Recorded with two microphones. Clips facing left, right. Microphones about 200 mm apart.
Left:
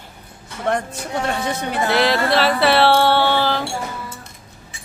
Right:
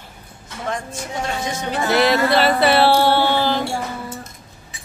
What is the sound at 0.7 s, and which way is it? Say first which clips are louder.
A woman's voice: left 5 dB; 60° left (ahead or behind).